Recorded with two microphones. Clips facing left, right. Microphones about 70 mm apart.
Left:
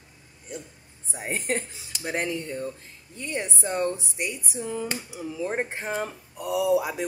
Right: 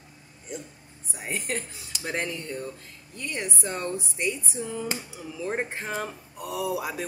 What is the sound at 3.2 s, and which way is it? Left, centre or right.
Speech, centre.